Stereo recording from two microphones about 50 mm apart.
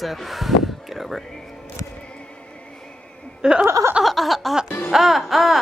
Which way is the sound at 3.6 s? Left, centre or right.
Right.